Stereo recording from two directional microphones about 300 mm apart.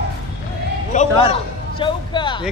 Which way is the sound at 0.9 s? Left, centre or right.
Left.